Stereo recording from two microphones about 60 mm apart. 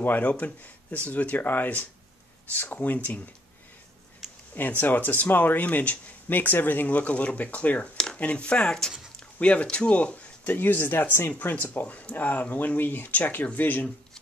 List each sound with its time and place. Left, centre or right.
0.0 s speech: left
4.6 s speech: left